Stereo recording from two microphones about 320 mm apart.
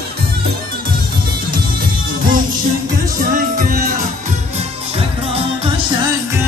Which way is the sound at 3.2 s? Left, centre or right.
Right.